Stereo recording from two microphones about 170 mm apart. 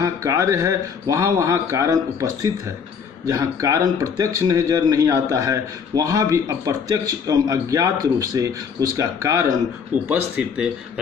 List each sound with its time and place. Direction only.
0.0 s speech: 20° right (ahead or behind)
10.0 s speech: 5° right (ahead or behind)